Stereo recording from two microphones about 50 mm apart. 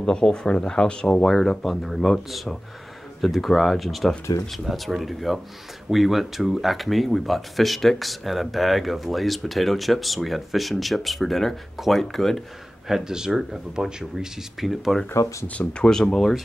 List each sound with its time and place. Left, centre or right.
0.0 s speech: centre
12.8 s speech: centre
14.1 s speech: centre
15.4 s speech: left
15.8 s speech: centre